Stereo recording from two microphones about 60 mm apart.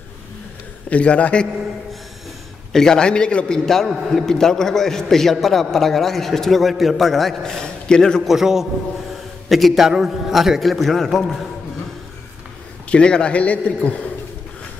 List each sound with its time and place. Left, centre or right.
0.8 s a man's voice: left
2.7 s a man's voice: centre
8.3 s a man's voice: centre
12.9 s a man's voice: centre